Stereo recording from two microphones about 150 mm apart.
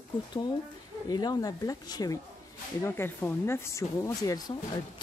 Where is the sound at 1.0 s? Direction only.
25° left (ahead or behind).